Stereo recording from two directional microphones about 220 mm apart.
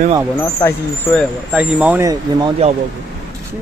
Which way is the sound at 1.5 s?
5° right (ahead or behind).